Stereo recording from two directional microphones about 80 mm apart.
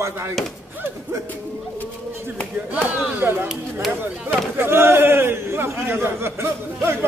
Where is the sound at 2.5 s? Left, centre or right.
Centre.